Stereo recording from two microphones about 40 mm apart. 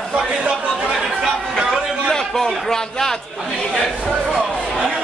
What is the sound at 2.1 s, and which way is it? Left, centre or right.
A man's voice, centre.